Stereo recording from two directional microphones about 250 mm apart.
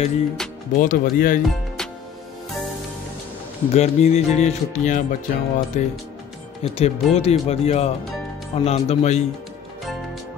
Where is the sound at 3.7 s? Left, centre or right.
Left.